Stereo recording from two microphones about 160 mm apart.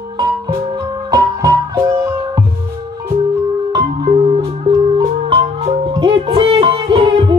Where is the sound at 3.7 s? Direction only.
30° right (ahead or behind).